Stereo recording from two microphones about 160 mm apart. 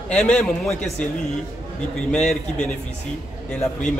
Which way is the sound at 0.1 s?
5° left (ahead or behind).